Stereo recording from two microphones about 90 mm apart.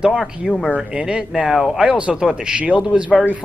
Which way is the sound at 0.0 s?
10° right (ahead or behind).